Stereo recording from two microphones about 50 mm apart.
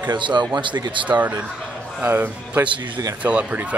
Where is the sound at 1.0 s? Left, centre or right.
Right.